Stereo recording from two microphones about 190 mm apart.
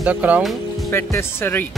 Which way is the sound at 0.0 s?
10° right (ahead or behind).